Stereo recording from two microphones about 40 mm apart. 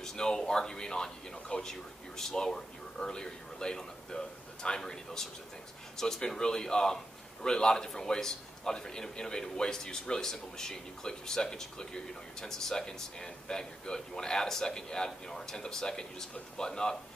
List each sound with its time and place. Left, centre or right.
0.0 s a man's voice: centre